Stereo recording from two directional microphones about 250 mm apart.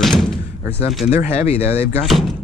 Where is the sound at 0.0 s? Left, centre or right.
Centre.